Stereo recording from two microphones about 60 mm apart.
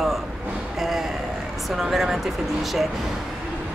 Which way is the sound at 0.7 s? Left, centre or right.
Centre.